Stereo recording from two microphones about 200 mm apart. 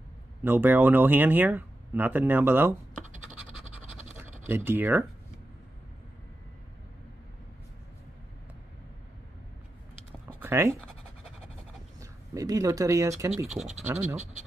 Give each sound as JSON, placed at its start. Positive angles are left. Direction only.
{"t": 0.4, "sound": "speech", "side_deg": -10}
{"t": 4.5, "sound": "speech", "side_deg": -10}
{"t": 10.2, "sound": "a sound", "side_deg": -15}
{"t": 12.0, "sound": "speech", "side_deg": -15}
{"t": 13.9, "sound": "speech", "side_deg": -35}